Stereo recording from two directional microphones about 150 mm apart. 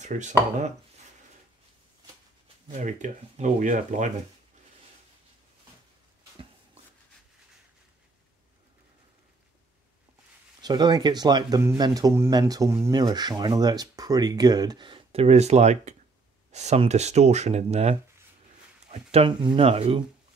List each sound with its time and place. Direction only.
0.0 s speech: 55° right (ahead or behind)
2.8 s speech: 50° right (ahead or behind)
10.6 s speech: 30° right (ahead or behind)